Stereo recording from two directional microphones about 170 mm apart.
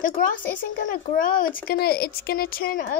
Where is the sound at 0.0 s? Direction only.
55° left (ahead or behind).